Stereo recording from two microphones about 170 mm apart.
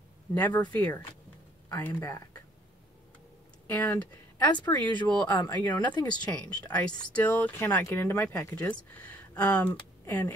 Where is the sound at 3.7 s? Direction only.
10° left (ahead or behind).